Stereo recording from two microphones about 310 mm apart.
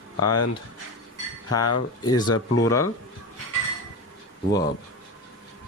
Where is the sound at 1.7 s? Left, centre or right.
Left.